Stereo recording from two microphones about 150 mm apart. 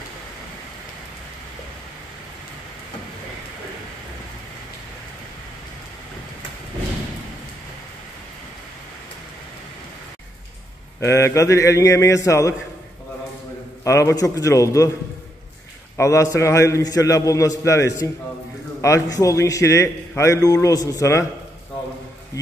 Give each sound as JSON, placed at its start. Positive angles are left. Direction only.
{"t": 11.0, "sound": "a man's voice", "side_deg": 20}
{"t": 13.8, "sound": "a man's voice", "side_deg": 20}
{"t": 16.0, "sound": "a man's voice", "side_deg": 20}